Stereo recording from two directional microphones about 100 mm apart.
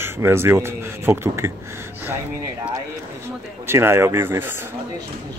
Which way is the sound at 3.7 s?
25° right (ahead or behind).